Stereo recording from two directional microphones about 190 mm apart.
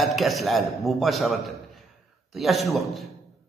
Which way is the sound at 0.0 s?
Centre (ahead or behind).